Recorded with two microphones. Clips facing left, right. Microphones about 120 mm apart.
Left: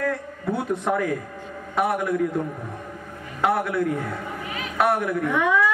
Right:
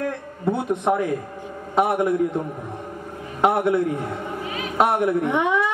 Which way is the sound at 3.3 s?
20° right (ahead or behind).